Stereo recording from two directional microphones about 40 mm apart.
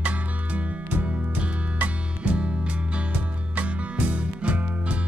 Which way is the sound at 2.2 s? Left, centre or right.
Right.